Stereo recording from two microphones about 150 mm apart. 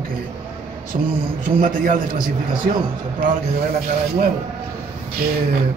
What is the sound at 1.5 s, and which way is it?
Speech, 65° right (ahead or behind).